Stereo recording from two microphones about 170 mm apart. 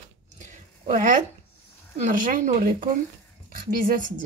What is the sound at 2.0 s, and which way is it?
Speech, 50° right (ahead or behind).